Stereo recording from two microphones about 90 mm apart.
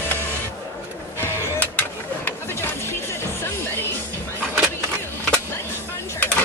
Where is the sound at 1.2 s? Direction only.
20° left (ahead or behind).